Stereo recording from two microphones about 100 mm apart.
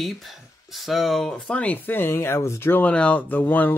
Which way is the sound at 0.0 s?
Centre (ahead or behind).